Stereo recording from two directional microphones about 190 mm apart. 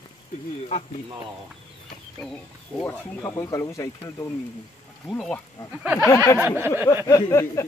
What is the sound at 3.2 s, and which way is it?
Speech, 15° left (ahead or behind).